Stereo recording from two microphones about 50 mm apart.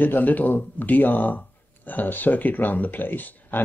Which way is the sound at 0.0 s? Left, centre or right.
Left.